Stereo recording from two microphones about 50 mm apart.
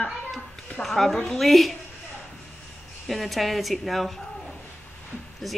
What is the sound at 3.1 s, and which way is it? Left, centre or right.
Speech, centre.